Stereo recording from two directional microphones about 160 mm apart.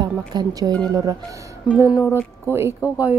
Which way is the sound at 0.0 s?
25° right (ahead or behind).